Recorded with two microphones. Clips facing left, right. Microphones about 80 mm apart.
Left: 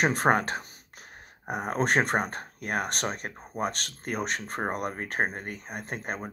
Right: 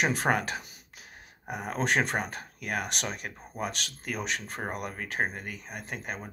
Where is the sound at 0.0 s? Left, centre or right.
Left.